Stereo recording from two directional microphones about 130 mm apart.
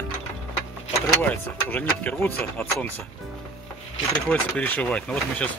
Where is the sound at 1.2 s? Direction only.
15° left (ahead or behind).